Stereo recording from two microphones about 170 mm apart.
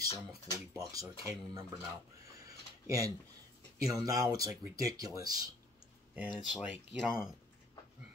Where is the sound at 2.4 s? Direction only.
20° right (ahead or behind).